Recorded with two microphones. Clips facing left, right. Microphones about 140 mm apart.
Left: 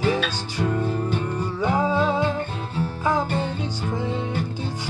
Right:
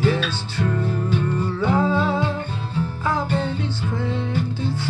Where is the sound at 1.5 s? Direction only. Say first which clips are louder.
Right 1 dB; 15° left (ahead or behind).